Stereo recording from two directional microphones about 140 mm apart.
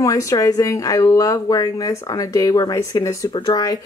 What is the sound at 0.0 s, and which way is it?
Speech, 25° left (ahead or behind).